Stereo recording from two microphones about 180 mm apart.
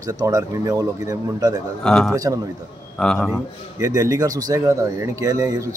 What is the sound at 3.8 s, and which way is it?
Speech, 20° right (ahead or behind).